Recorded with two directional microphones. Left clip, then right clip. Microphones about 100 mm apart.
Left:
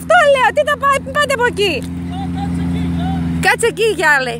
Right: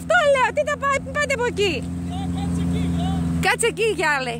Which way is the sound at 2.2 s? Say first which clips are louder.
Left 6 dB; 40° right (ahead or behind).